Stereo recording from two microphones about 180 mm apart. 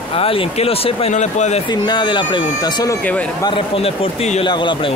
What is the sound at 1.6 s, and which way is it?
Speech, 25° left (ahead or behind).